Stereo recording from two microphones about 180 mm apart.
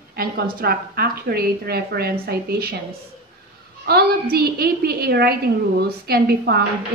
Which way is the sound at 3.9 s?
60° right (ahead or behind).